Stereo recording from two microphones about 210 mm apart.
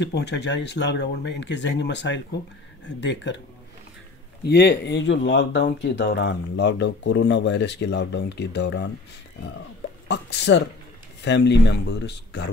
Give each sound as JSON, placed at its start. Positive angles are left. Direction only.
{"t": 0.0, "sound": "speech", "side_deg": 55}
{"t": 4.5, "sound": "speech", "side_deg": 50}
{"t": 10.0, "sound": "speech", "side_deg": 55}